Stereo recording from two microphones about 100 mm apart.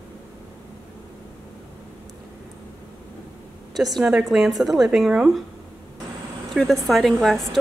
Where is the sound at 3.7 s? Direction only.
Centre (ahead or behind).